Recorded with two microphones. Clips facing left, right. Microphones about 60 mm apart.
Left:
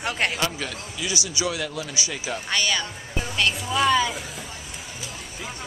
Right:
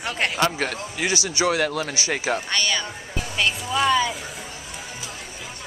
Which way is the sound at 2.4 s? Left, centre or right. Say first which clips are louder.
Even; centre.